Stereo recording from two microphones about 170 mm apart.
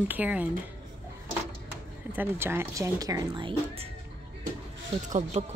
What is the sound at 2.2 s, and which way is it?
Speech, 15° right (ahead or behind).